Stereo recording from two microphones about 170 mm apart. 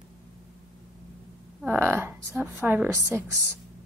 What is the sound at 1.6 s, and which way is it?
A woman's voice, 10° right (ahead or behind).